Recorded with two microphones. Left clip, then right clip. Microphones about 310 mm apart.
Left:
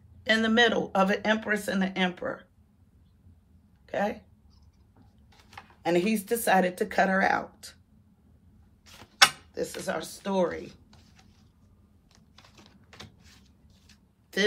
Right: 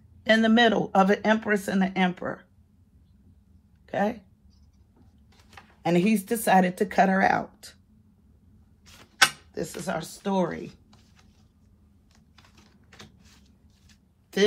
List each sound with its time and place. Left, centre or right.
0.2 s speech: centre
3.8 s speech: centre
5.8 s speech: centre
9.5 s speech: centre
14.3 s a woman's voice: centre